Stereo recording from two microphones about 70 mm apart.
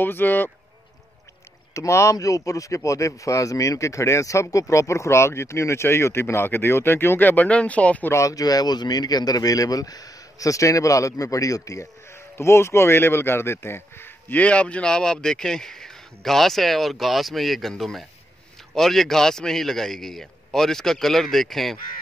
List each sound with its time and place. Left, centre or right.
0.0 s speech: left
1.7 s speech: left; by 8.1 s centre
8.1 s speech: left
14.4 s speech: centre